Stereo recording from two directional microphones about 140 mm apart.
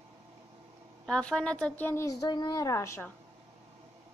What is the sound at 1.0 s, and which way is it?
A woman's voice, 5° left (ahead or behind).